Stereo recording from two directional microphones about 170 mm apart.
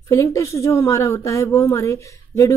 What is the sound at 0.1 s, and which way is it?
A woman's voice, 15° left (ahead or behind).